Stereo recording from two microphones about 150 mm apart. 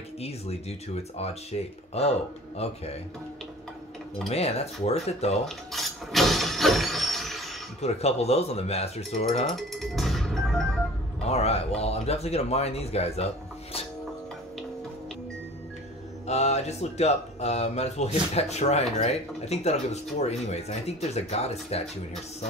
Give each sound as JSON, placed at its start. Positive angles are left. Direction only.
{"t": 0.2, "sound": "speech", "side_deg": 45}
{"t": 4.3, "sound": "speech", "side_deg": 45}
{"t": 5.7, "sound": "a sound", "side_deg": 0}
{"t": 7.8, "sound": "speech", "side_deg": 45}
{"t": 9.6, "sound": "music", "side_deg": 0}
{"t": 11.2, "sound": "speech", "side_deg": 45}
{"t": 16.3, "sound": "speech", "side_deg": 45}